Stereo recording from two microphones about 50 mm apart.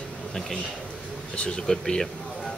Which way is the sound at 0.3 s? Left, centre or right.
Centre.